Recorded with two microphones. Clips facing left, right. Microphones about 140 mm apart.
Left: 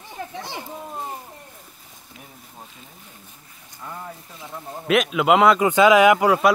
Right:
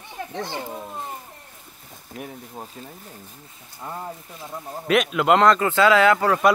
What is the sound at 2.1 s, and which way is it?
Speech, 50° right (ahead or behind).